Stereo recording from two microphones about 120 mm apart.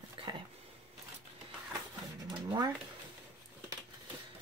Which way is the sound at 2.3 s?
35° right (ahead or behind).